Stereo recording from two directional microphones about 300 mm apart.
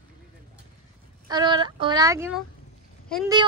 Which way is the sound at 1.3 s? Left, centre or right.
Centre.